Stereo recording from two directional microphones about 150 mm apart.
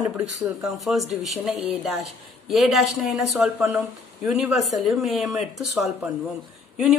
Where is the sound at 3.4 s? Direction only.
15° right (ahead or behind).